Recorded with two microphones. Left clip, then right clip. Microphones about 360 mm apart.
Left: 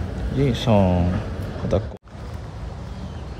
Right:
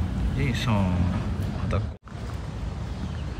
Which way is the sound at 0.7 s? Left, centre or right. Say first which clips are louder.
Left 12 dB; left.